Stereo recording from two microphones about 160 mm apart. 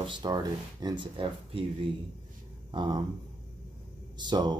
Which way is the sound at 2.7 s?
30° right (ahead or behind).